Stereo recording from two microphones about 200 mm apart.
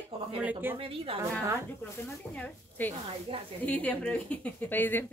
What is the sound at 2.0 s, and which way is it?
Speech, 10° left (ahead or behind).